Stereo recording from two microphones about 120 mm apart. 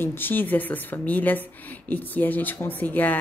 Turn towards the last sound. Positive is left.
turn(degrees=15)  # may be behind; listen again after turning